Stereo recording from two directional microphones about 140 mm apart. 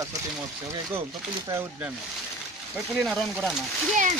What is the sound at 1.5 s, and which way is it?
Speech, 15° right (ahead or behind).